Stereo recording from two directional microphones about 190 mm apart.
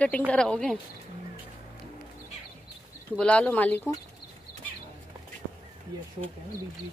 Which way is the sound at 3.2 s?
5° left (ahead or behind).